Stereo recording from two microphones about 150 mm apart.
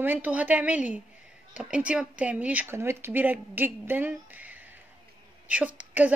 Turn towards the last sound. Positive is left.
turn(degrees=-10)  # may be behind; listen again after turning